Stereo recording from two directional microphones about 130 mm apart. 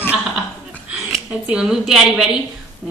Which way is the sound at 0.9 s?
5° right (ahead or behind).